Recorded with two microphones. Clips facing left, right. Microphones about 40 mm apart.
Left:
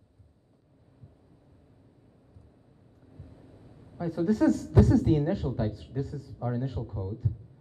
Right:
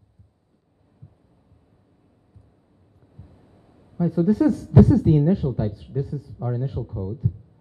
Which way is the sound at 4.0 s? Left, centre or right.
Centre.